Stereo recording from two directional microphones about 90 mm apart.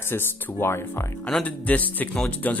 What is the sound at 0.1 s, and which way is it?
Speech, 25° left (ahead or behind).